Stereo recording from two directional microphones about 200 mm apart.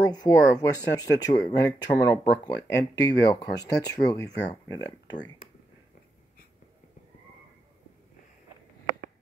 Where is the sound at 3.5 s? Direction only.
20° left (ahead or behind).